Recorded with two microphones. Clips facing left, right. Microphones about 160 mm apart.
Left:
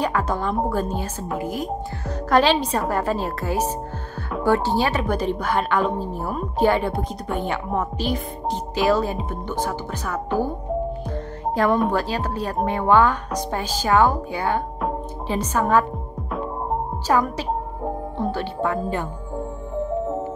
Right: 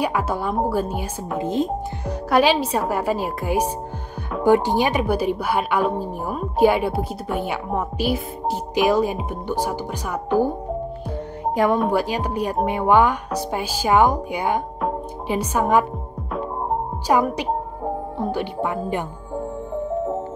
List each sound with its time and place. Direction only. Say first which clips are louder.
0.0 s a woman's voice: even; 10° right (ahead or behind)
1.4 s speech: right 8 dB; 25° right (ahead or behind)
2.0 s a woman's voice: even; 10° right (ahead or behind)
11.1 s music: right 1 dB; 15° right (ahead or behind)
11.9 s a woman's voice: right 2 dB; 15° right (ahead or behind)
17.1 s a woman's voice: right 2 dB; 15° right (ahead or behind)